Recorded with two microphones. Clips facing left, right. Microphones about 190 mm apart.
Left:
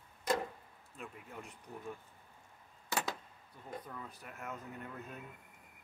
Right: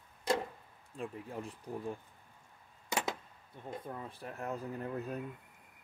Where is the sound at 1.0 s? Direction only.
35° right (ahead or behind).